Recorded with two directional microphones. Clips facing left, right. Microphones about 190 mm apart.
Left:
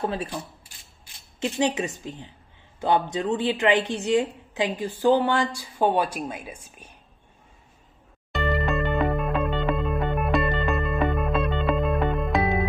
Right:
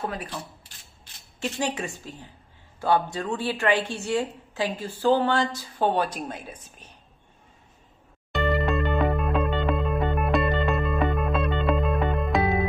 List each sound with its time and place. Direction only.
0.0 s a woman's voice: 30° left (ahead or behind)
1.4 s a woman's voice: 20° left (ahead or behind)
8.3 s music: centre (ahead or behind)